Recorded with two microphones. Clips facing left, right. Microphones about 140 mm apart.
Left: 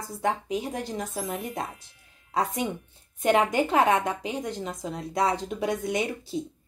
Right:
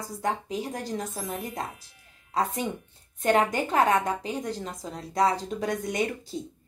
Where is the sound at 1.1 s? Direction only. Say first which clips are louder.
Left 2 dB; centre (ahead or behind).